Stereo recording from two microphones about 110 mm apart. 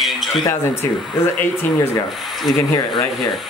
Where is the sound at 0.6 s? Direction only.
20° left (ahead or behind).